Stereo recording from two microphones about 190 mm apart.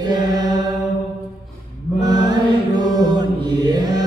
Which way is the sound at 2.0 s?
20° right (ahead or behind).